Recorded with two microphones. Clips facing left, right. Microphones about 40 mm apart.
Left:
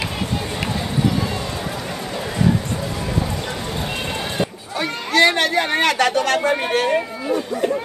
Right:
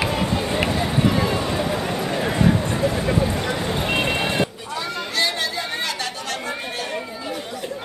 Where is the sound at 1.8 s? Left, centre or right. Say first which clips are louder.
Right 3 dB; right.